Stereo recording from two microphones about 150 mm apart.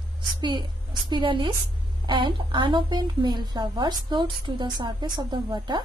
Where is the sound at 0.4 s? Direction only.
30° right (ahead or behind).